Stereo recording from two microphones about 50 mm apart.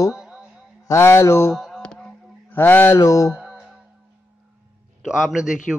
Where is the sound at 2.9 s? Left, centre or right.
Left.